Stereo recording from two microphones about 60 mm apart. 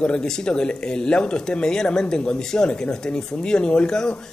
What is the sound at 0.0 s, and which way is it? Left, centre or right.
Speech, centre.